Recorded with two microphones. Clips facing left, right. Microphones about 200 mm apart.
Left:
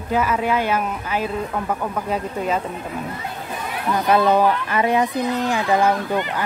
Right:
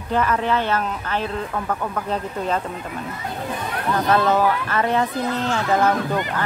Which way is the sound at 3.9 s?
15° left (ahead or behind).